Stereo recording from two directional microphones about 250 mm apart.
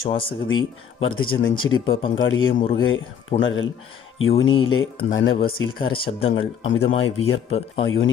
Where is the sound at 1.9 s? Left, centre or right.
Centre.